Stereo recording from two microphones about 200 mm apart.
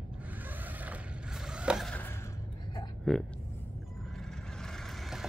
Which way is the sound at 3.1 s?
5° left (ahead or behind).